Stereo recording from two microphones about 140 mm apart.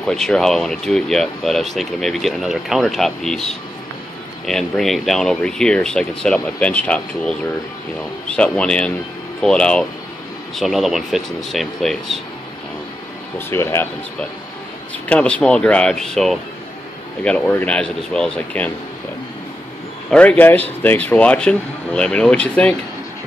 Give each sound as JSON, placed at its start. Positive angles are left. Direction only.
{"t": 0.0, "sound": "speech", "side_deg": 5}
{"t": 13.5, "sound": "speech", "side_deg": 20}
{"t": 15.0, "sound": "speech", "side_deg": 10}
{"t": 20.1, "sound": "speech", "side_deg": 10}